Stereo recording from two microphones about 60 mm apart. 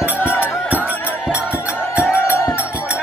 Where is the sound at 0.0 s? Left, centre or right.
Right.